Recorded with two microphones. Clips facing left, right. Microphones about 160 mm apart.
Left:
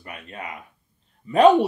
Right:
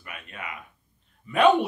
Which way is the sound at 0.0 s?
35° left (ahead or behind).